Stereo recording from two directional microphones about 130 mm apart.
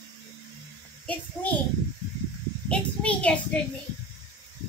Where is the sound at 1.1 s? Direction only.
10° left (ahead or behind).